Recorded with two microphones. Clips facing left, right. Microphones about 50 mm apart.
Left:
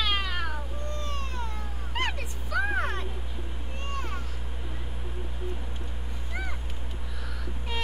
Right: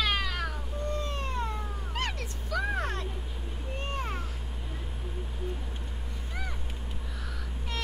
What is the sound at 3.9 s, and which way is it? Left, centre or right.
Vehicle, centre.